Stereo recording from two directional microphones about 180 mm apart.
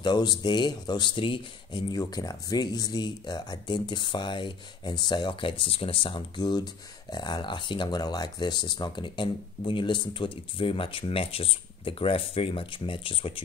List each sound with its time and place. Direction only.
0.0 s speech: 25° left (ahead or behind)